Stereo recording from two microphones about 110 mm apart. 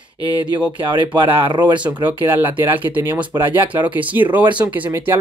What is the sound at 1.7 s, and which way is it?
Speech, 15° right (ahead or behind).